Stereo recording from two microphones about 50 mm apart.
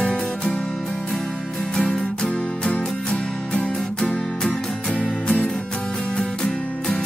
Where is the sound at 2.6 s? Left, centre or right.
Centre.